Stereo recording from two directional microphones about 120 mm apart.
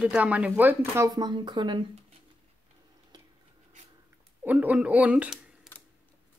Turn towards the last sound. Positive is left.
turn(degrees=-5)  # may be behind; listen again after turning